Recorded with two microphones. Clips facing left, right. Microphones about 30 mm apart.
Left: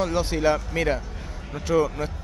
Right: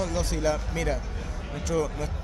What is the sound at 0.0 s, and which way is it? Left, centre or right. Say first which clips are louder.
Speech: left 5 dB; left.